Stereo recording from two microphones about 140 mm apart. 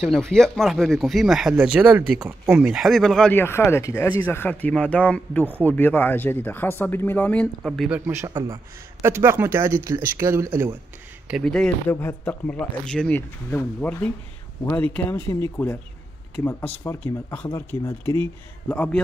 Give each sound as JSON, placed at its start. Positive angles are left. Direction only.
{"t": 0.0, "sound": "speech", "side_deg": 5}
{"t": 3.3, "sound": "speech", "side_deg": 15}
{"t": 7.6, "sound": "speech", "side_deg": 0}
{"t": 8.3, "sound": "a man's voice", "side_deg": -30}
{"t": 9.0, "sound": "speech", "side_deg": -15}
{"t": 11.4, "sound": "speech", "side_deg": 5}
{"t": 18.7, "sound": "speech", "side_deg": 10}